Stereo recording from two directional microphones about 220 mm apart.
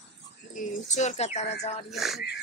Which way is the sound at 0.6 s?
35° left (ahead or behind).